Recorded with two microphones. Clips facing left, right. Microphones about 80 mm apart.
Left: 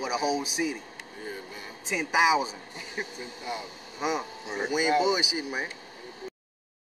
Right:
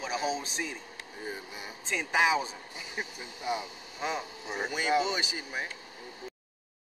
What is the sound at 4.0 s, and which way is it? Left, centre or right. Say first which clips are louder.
Speech: left 4 dB; centre.